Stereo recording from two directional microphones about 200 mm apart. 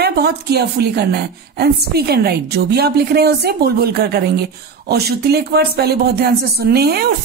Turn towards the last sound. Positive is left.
turn(degrees=-50)  # may be behind; listen again after turning